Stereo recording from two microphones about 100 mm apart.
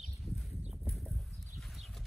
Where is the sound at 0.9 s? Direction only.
Centre (ahead or behind).